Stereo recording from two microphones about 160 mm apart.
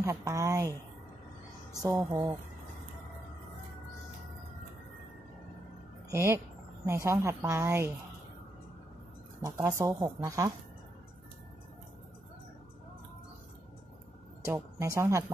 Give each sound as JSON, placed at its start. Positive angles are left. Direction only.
{"t": 0.0, "sound": "speech", "side_deg": -20}
{"t": 1.8, "sound": "speech", "side_deg": -20}
{"t": 6.0, "sound": "speech", "side_deg": -15}
{"t": 9.4, "sound": "speech", "side_deg": -20}
{"t": 14.4, "sound": "speech", "side_deg": -15}